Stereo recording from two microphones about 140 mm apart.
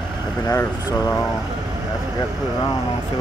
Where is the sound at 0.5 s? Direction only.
20° left (ahead or behind).